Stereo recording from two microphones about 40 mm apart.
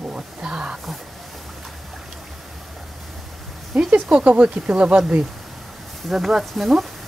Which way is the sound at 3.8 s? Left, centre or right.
Right.